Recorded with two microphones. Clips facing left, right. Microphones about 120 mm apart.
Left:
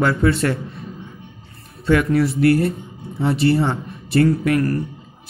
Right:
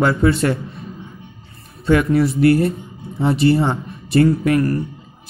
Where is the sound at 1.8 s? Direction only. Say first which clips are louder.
Right 1 dB; 20° right (ahead or behind).